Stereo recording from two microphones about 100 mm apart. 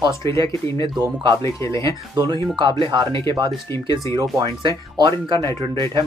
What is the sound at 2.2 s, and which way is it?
Speech, 50° right (ahead or behind).